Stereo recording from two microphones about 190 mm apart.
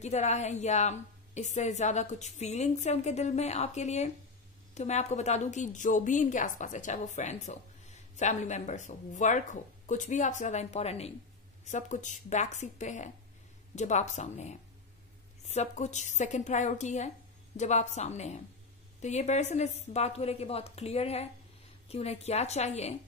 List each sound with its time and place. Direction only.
0.0 s a woman's voice: 35° left (ahead or behind)